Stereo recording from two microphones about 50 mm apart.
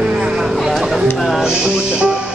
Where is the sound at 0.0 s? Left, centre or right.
Centre.